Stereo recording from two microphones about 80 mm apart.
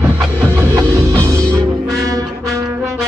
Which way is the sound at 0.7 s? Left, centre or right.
Right.